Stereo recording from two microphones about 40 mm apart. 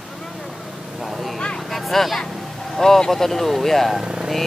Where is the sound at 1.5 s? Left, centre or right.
Centre.